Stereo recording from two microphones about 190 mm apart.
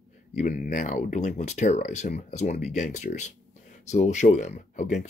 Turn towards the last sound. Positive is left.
turn(degrees=40)  # may be behind; listen again after turning